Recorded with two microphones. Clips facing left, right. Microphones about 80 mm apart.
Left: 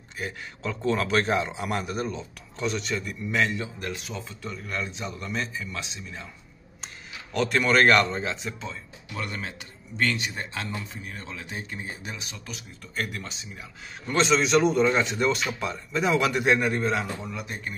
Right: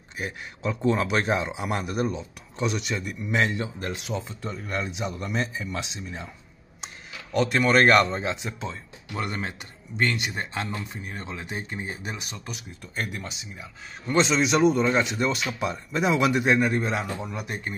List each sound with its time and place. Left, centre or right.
0.2 s a man's voice: centre
3.3 s a man's voice: right
7.3 s a man's voice: centre; by 11.4 s right
12.4 s a man's voice: centre
15.6 s a man's voice: centre
16.7 s a man's voice: centre